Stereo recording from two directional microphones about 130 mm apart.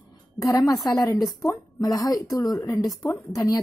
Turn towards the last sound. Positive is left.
turn(degrees=15)  # may be behind; listen again after turning